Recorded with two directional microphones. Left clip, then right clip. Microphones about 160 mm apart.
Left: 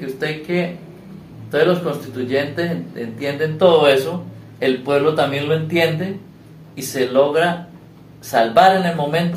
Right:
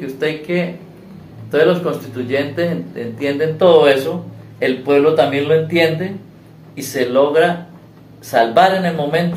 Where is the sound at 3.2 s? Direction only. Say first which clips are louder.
Right 2 dB; 10° right (ahead or behind).